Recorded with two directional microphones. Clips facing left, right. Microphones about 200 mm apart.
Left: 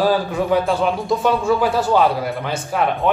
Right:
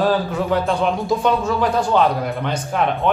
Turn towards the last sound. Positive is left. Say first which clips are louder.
# even
turn(degrees=0)  # may be behind; listen again after turning